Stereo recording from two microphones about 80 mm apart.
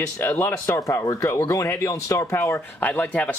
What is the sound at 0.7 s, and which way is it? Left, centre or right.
Speech, left.